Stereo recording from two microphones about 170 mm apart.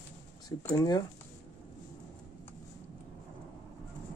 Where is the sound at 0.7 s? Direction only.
25° left (ahead or behind).